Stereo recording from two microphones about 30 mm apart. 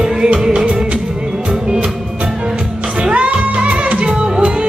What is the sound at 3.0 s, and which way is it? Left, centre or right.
Music, right.